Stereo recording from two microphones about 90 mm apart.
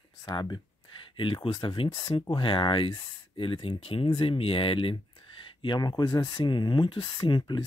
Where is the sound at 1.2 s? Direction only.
65° left (ahead or behind).